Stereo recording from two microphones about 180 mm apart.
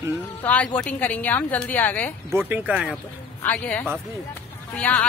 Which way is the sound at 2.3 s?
10° right (ahead or behind).